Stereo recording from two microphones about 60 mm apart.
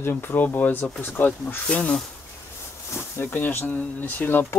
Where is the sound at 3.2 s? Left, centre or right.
Left.